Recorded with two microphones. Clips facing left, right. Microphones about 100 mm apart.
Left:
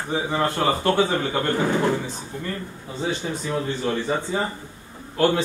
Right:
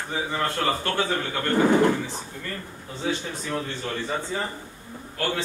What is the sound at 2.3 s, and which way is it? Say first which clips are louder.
Speech: left 5 dB; 30° left (ahead or behind).